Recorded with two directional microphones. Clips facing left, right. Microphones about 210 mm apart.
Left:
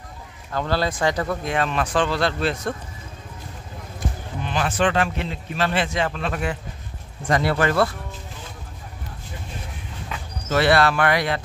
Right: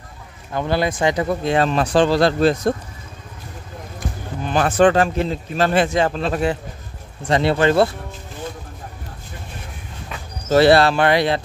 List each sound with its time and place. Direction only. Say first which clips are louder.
0.5 s speech: right 3 dB; 20° right (ahead or behind); by 2.7 s 40° right (ahead or behind)
4.4 s speech: right 7 dB; 45° right (ahead or behind); by 7.9 s 25° right (ahead or behind)
10.5 s speech: right 6 dB; 35° right (ahead or behind)